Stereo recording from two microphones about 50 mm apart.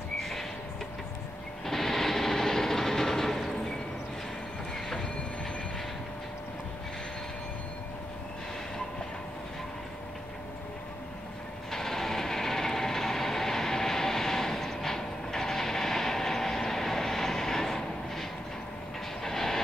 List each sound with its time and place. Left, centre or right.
1.7 s train: centre
4.8 s train: centre
11.7 s train: centre
19.2 s vehicle: centre